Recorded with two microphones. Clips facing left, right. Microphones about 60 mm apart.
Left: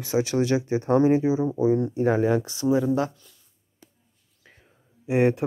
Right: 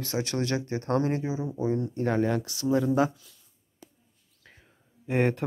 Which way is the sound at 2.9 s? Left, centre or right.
Centre.